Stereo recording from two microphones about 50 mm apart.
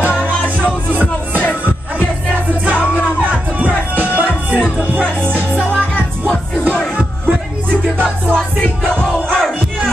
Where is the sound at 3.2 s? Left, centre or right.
Right.